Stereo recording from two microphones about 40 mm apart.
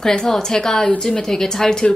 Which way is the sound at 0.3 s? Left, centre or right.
Centre.